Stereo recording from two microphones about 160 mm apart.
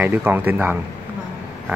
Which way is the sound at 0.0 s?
10° right (ahead or behind).